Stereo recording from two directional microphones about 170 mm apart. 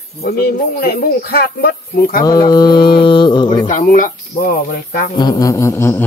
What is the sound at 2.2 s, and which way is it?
Mantra, 25° left (ahead or behind).